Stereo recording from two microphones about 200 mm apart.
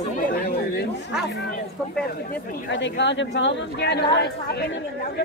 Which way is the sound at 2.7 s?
65° left (ahead or behind).